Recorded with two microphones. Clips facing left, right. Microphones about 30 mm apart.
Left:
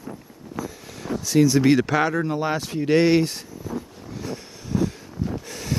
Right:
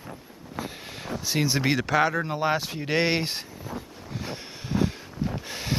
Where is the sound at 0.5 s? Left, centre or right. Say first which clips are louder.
Left 3 dB; right.